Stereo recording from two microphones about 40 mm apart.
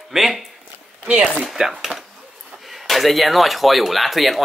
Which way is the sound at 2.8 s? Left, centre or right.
Centre.